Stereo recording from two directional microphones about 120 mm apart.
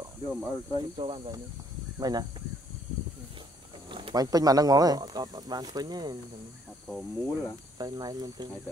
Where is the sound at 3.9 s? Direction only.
50° right (ahead or behind).